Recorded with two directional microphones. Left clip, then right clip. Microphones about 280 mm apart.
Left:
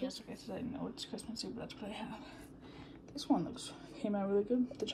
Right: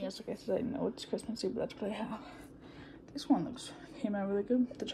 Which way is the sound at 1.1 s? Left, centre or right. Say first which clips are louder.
Right 8 dB; centre.